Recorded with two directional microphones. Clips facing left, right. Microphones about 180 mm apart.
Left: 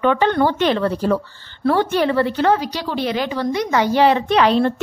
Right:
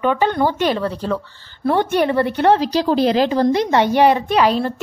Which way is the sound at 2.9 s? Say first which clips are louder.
Right 5 dB; 35° right (ahead or behind).